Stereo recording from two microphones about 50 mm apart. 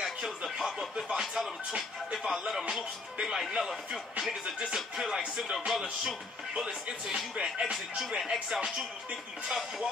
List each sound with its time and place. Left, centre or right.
0.6 s music: centre
0.9 s speech: centre
1.2 s music: centre
2.2 s speech: centre
4.3 s speech: centre
4.7 s speech: centre
5.7 s music: centre
6.5 s speech: centre
9.5 s music: centre